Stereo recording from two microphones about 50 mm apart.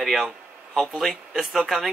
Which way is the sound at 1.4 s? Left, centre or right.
Centre.